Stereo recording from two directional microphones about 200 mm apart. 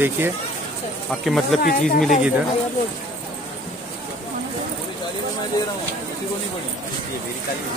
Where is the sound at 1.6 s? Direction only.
45° left (ahead or behind).